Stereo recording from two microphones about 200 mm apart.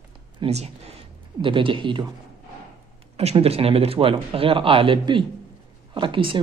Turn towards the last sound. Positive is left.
turn(degrees=-25)  # may be behind; listen again after turning